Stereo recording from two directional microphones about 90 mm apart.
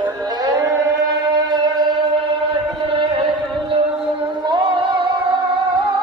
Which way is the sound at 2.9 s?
70° right (ahead or behind).